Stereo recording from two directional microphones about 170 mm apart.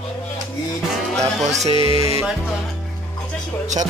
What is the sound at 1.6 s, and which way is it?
Music, 30° left (ahead or behind).